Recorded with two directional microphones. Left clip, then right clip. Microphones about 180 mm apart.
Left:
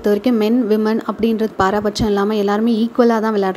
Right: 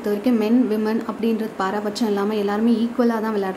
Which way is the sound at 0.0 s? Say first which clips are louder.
Left 5 dB; 35° left (ahead or behind).